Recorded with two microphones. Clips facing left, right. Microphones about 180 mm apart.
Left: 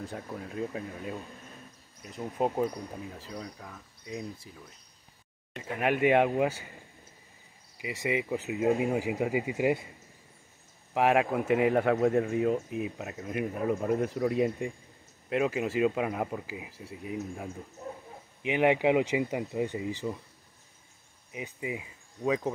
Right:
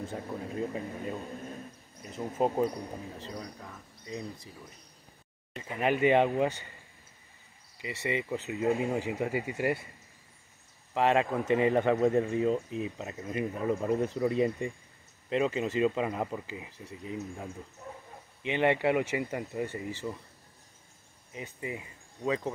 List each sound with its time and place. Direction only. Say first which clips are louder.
0.0 s speech: right 2 dB; centre (ahead or behind)
7.8 s speech: left 2 dB; 15° left (ahead or behind)
10.9 s speech: left 1 dB; 10° left (ahead or behind)
18.4 s speech: left 2 dB; 10° left (ahead or behind)
21.3 s speech: left 2 dB; 15° left (ahead or behind)